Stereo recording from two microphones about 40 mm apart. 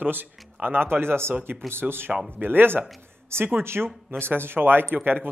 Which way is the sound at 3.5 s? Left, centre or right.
Right.